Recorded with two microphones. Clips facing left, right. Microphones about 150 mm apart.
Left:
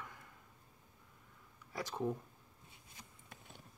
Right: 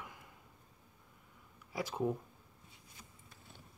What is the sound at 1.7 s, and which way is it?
Speech, 10° right (ahead or behind).